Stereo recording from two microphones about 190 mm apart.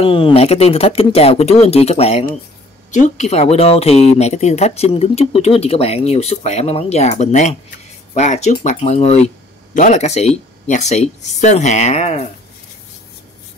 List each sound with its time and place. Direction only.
0.0 s speech: 30° left (ahead or behind)